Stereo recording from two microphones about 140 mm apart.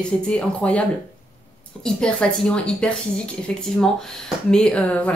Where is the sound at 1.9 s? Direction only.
5° left (ahead or behind).